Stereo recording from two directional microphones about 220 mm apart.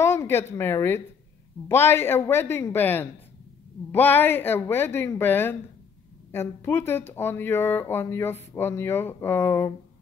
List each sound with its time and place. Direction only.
0.0 s speech: 10° left (ahead or behind)